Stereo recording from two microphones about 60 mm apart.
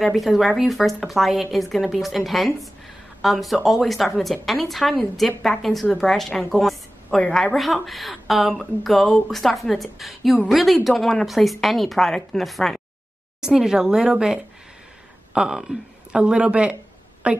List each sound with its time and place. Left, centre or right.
0.0 s a woman's voice: centre
13.4 s a woman's voice: centre